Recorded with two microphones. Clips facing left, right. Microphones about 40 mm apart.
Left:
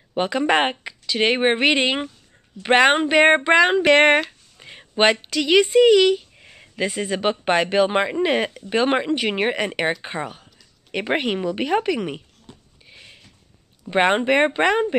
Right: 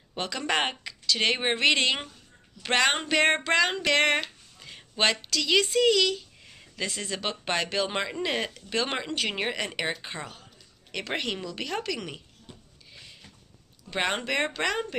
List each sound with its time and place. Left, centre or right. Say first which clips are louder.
0.1 s speech: left 9 dB; left
12.9 s a sound: left 3 dB; left
13.8 s speech: left 10 dB; left